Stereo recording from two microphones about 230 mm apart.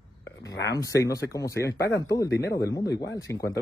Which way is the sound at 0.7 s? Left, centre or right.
Centre.